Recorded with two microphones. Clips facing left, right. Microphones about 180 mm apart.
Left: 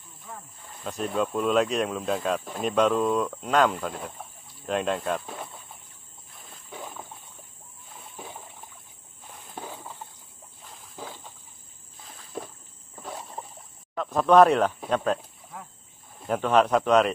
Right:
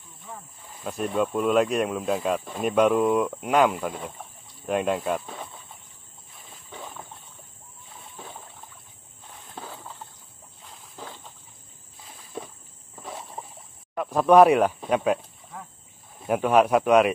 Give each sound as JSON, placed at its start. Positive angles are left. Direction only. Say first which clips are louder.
{"t": 0.2, "sound": "speech", "louder": "right 1 dB", "side_deg": -5}
{"t": 6.3, "sound": "wild animals", "louder": "left 1 dB", "side_deg": 0}
{"t": 8.0, "sound": "rowboat", "louder": "left 1 dB", "side_deg": 10}
{"t": 9.6, "sound": "a sound", "louder": "left 1 dB", "side_deg": 15}
{"t": 12.3, "sound": "walk", "louder": "even", "side_deg": 0}
{"t": 12.9, "sound": "rowboat", "louder": "even", "side_deg": 0}
{"t": 13.9, "sound": "speech", "louder": "right 2 dB", "side_deg": -10}
{"t": 15.5, "sound": "splash", "louder": "right 1 dB", "side_deg": 5}
{"t": 16.2, "sound": "speech", "louder": "right 2 dB", "side_deg": -10}